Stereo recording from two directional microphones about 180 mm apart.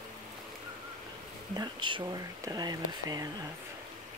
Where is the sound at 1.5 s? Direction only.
25° right (ahead or behind).